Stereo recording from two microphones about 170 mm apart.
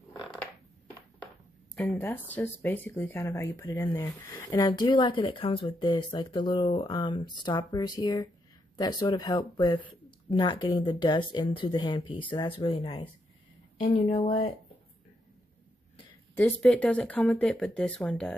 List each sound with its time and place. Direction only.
1.8 s speech: 10° left (ahead or behind); by 13.1 s 30° left (ahead or behind)
13.9 s speech: 45° left (ahead or behind)
16.3 s speech: 10° left (ahead or behind)